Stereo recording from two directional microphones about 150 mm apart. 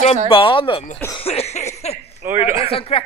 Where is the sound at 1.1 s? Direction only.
40° left (ahead or behind).